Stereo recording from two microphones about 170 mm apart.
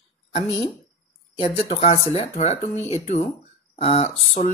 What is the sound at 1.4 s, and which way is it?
Speech, 35° left (ahead or behind).